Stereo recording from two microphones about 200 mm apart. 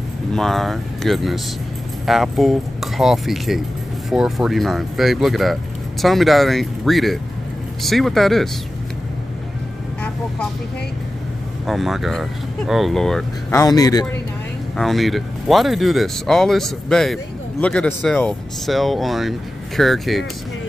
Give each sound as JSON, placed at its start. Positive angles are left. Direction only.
{"t": 0.3, "sound": "speech", "side_deg": 0}
{"t": 11.6, "sound": "speech", "side_deg": 0}
{"t": 13.5, "sound": "speech", "side_deg": 20}
{"t": 14.8, "sound": "speech", "side_deg": 0}